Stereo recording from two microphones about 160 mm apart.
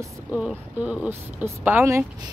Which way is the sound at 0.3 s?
10° right (ahead or behind).